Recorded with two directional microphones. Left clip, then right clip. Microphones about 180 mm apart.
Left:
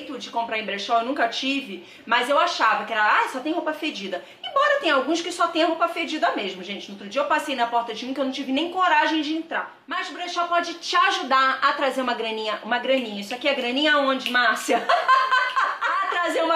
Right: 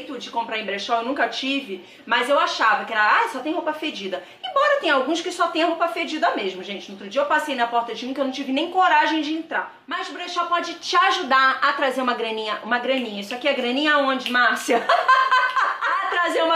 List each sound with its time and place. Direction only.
0.5 s a woman's voice: centre (ahead or behind)
14.7 s chuckle: 15° right (ahead or behind)